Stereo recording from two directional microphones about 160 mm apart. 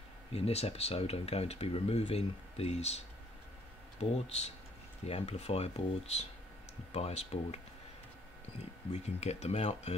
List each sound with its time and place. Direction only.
0.3 s speech: 40° left (ahead or behind)
4.0 s speech: 40° left (ahead or behind)
8.9 s speech: 45° left (ahead or behind)